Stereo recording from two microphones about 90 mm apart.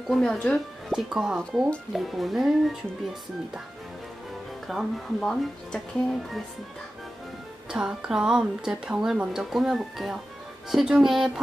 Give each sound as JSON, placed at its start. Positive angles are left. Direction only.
{"t": 0.1, "sound": "speech", "side_deg": 10}
{"t": 0.9, "sound": "speech", "side_deg": -5}
{"t": 4.6, "sound": "speech", "side_deg": 0}
{"t": 7.7, "sound": "speech", "side_deg": -10}